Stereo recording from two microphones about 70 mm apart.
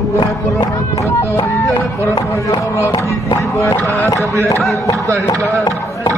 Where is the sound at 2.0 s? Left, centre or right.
Left.